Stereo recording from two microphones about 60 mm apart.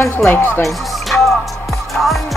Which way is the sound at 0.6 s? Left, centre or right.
Centre.